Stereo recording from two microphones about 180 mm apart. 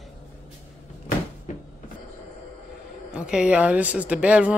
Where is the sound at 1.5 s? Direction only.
40° left (ahead or behind).